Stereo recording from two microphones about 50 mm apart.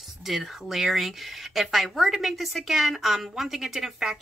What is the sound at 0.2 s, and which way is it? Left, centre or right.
Speech, centre.